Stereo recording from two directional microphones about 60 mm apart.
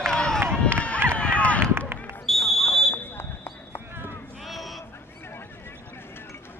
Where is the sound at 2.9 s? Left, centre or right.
Left.